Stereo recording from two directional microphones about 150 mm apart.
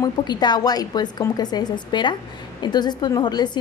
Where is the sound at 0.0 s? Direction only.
30° left (ahead or behind).